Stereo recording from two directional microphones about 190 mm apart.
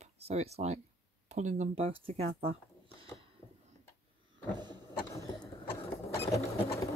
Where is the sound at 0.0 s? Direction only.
35° right (ahead or behind).